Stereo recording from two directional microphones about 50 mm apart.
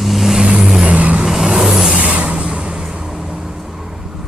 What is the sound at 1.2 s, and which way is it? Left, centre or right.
Vehicle, centre.